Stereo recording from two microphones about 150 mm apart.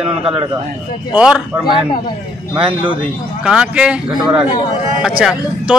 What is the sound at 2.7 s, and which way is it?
Speech, 35° right (ahead or behind).